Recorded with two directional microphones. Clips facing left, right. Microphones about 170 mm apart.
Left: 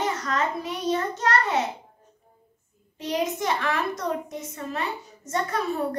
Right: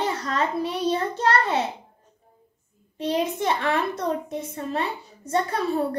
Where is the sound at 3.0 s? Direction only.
30° right (ahead or behind).